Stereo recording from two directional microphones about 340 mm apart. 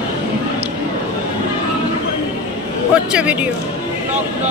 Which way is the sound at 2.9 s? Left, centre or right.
Centre.